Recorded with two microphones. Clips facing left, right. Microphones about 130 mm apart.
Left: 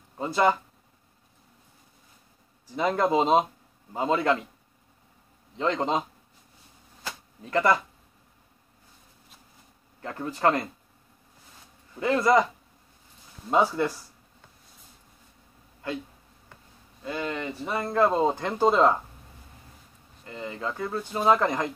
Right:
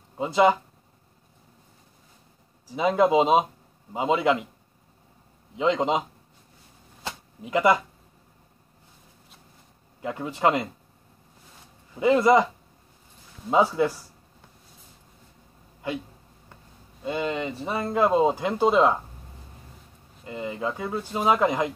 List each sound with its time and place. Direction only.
0.2 s speech: 10° right (ahead or behind)
2.7 s speech: 5° right (ahead or behind)
5.6 s speech: 10° right (ahead or behind)
7.4 s speech: 10° right (ahead or behind)
10.0 s speech: 15° right (ahead or behind)
11.9 s speech: 15° right (ahead or behind)
13.5 s speech: 5° right (ahead or behind)
17.0 s speech: 20° right (ahead or behind); by 18.9 s 5° right (ahead or behind)
20.2 s speech: 15° right (ahead or behind)